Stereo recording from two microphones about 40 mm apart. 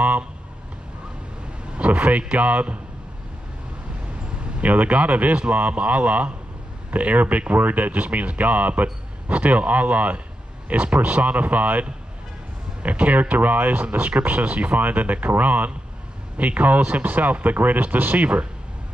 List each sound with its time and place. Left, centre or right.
1.8 s speech: right
4.2 s a sound: right
4.6 s speech: right
12.8 s speech: right